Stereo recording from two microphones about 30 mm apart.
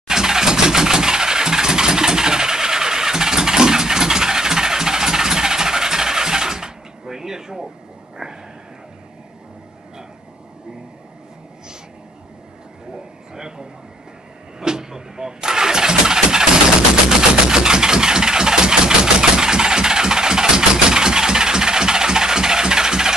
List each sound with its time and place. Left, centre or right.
0.1 s vehicle: centre
8.2 s sniff: right
12.9 s a sound: right
14.6 s engine starting: right